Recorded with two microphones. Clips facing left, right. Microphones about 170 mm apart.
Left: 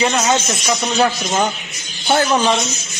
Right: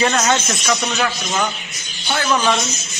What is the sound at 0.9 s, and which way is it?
Speech, 30° left (ahead or behind).